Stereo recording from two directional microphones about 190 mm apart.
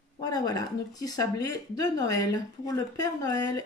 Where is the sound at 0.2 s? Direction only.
20° left (ahead or behind).